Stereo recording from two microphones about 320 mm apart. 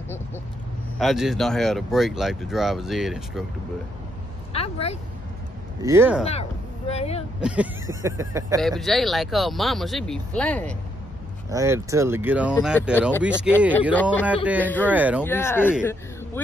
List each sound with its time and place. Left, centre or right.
0.9 s speech: centre
4.5 s a sound: centre
5.8 s speech: centre
6.9 s speech: centre
7.3 s speech: centre
8.5 s speech: centre
11.5 s speech: centre
15.2 s speech: centre